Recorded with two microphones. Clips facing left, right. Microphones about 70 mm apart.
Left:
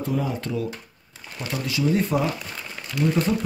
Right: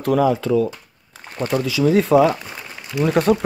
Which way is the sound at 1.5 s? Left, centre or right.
Right.